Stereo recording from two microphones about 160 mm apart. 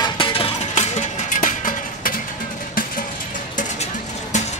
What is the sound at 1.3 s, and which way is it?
Music, 55° left (ahead or behind).